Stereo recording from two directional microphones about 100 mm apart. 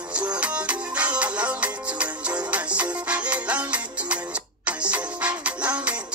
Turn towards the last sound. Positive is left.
turn(degrees=-10)  # may be behind; listen again after turning